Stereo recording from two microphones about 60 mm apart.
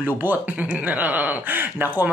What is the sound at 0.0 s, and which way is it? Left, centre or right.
Speech, right.